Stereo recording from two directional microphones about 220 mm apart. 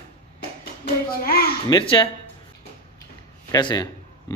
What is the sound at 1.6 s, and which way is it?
Speech, 20° left (ahead or behind).